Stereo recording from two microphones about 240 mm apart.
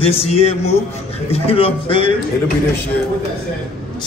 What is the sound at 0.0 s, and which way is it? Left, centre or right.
A man's voice, left.